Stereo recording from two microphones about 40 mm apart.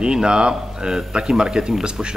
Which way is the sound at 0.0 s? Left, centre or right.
Right.